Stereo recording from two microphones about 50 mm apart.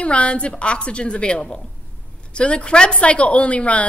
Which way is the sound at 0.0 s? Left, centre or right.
Left.